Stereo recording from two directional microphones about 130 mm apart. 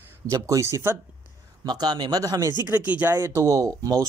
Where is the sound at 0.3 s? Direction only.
20° right (ahead or behind).